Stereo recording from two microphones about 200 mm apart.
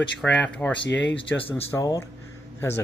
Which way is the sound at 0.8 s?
60° left (ahead or behind).